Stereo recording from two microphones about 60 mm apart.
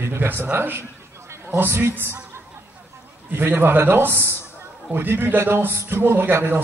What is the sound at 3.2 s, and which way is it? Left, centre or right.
A man's voice, right.